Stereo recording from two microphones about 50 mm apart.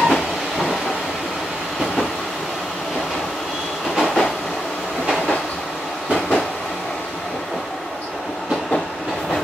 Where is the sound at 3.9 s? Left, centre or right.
Centre.